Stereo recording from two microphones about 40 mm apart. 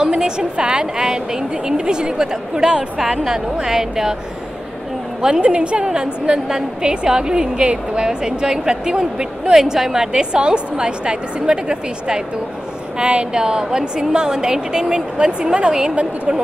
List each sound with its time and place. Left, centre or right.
0.0 s a woman's voice: centre
5.2 s a woman's voice: right
9.5 s a woman's voice: centre